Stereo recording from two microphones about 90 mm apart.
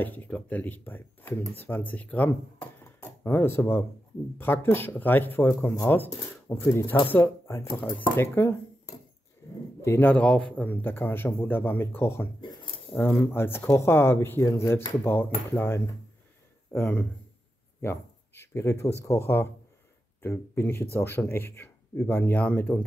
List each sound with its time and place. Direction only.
0.0 s speech: 20° left (ahead or behind)
2.8 s a sound: 25° left (ahead or behind)
4.4 s speech: 25° left (ahead or behind)
7.6 s speech: 80° left
8.2 s speech: 25° left (ahead or behind)
9.4 s a sound: 30° left (ahead or behind)
9.8 s bird: 30° left (ahead or behind)
10.0 s speech: 15° left (ahead or behind)
12.4 s a sound: 70° left (ahead or behind)
12.9 s speech: 20° left (ahead or behind)
14.4 s speech: 40° left (ahead or behind); by 17.1 s 20° left (ahead or behind)
17.8 s a sound: 30° left (ahead or behind)
19.0 s speech: 30° left (ahead or behind)